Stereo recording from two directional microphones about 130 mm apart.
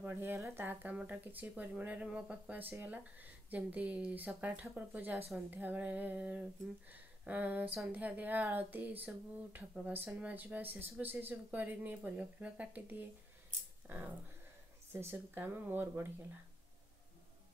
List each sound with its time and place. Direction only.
0.0 s speech: 15° right (ahead or behind)